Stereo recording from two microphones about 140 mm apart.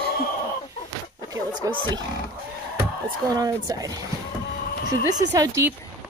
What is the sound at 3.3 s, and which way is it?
Speech, 25° right (ahead or behind).